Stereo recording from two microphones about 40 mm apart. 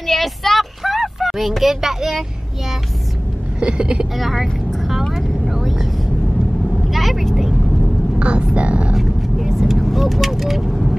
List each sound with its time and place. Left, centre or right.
0.0 s a sound: centre
3.5 s speech: right
4.2 s speech: centre
5.1 s vehicle: centre
6.9 s vehicle: centre
8.2 s speech: right
8.9 s vehicle: centre
10.0 s speech: centre